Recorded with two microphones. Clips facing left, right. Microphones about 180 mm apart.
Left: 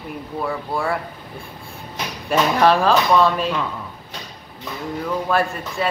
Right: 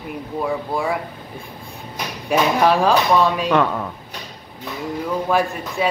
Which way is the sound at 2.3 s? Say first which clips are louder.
Even; 10° right (ahead or behind).